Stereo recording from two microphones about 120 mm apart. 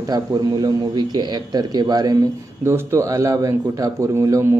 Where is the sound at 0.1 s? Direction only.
35° right (ahead or behind).